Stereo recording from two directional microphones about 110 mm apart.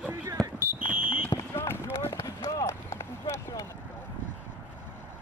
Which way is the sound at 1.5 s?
20° left (ahead or behind).